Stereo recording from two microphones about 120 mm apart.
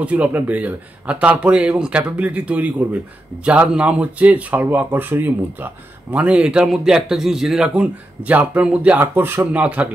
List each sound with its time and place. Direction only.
0.0 s speech: 10° right (ahead or behind)